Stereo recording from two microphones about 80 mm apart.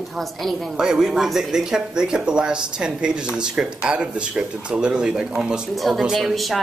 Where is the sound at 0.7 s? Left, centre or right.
Centre.